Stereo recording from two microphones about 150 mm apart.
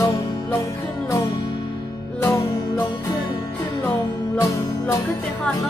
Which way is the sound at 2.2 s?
20° left (ahead or behind).